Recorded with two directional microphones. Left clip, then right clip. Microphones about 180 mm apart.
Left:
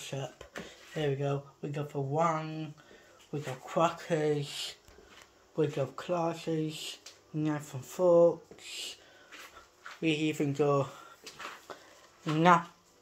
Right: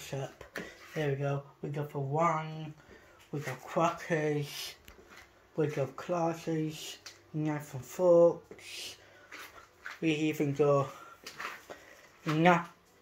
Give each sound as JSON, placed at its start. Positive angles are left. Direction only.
{"t": 0.0, "sound": "a sound", "side_deg": 10}
{"t": 0.9, "sound": "speech", "side_deg": 10}
{"t": 4.4, "sound": "speech", "side_deg": -15}
{"t": 5.6, "sound": "speech", "side_deg": 10}
{"t": 10.0, "sound": "speech", "side_deg": 10}
{"t": 12.4, "sound": "speech", "side_deg": 10}